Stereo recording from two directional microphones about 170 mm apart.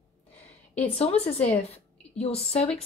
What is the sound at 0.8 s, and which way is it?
Speech, 35° left (ahead or behind).